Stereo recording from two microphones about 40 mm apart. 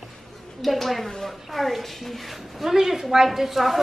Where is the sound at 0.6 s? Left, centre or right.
Centre.